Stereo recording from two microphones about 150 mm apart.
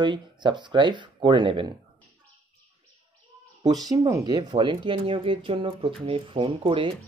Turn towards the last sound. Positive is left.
turn(degrees=-35)  # may be behind; listen again after turning